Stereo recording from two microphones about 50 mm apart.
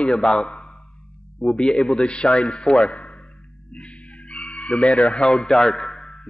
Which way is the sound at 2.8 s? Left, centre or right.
Left.